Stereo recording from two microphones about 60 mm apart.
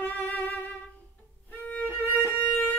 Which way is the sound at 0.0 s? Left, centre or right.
Left.